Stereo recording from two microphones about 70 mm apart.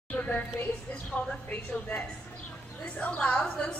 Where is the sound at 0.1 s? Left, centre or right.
Left.